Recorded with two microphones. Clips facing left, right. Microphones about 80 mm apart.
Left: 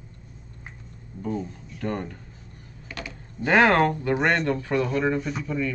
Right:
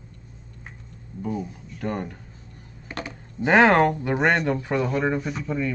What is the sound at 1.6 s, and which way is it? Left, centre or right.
Speech, centre.